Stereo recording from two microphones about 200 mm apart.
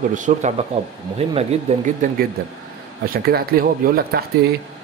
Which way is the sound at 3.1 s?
50° right (ahead or behind).